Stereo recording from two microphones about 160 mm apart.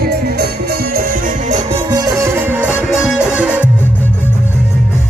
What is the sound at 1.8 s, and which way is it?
Music, 20° right (ahead or behind).